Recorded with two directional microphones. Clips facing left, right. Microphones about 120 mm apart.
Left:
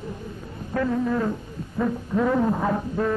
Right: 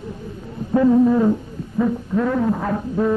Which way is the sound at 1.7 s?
Centre (ahead or behind).